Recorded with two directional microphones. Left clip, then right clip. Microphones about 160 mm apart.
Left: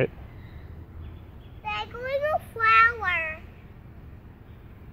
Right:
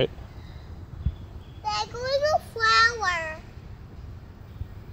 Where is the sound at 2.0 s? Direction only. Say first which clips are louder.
Right 3 dB; 50° right (ahead or behind).